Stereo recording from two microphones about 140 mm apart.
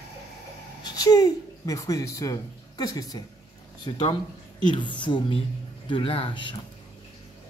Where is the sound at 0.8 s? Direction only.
25° left (ahead or behind).